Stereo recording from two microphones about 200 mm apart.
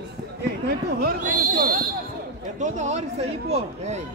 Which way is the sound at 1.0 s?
45° right (ahead or behind).